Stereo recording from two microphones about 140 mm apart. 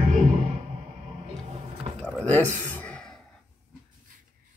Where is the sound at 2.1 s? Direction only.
15° left (ahead or behind).